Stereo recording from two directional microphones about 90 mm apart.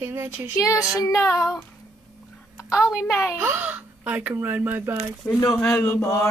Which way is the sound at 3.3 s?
25° right (ahead or behind).